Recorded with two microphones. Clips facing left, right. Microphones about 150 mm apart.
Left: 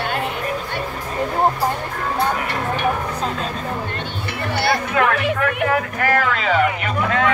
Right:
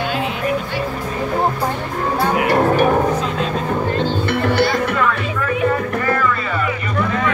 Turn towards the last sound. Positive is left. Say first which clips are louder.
# left 2 dB
turn(degrees=90)